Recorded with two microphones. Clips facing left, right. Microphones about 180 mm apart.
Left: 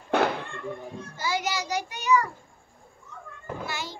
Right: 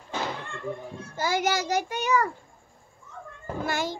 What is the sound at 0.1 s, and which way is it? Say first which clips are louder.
Cat: left 9 dB; 60° left (ahead or behind).